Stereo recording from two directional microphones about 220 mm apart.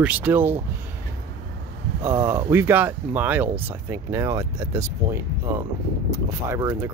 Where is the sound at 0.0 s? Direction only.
5° right (ahead or behind).